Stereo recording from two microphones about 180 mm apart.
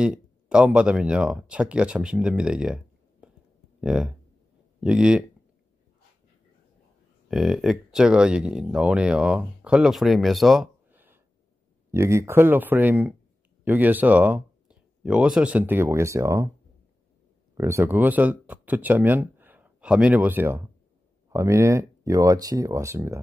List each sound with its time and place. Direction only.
0.0 s speech: 5° right (ahead or behind)
7.2 s speech: centre (ahead or behind)
17.6 s speech: 15° right (ahead or behind)